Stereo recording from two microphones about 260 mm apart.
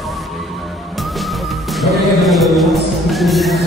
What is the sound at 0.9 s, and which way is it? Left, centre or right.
Music, centre.